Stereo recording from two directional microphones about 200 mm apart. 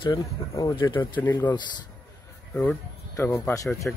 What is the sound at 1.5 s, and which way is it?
Speech, 20° left (ahead or behind).